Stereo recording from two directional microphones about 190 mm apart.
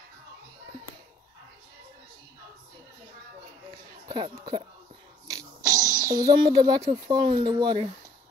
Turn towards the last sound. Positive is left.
turn(degrees=-25)  # may be behind; listen again after turning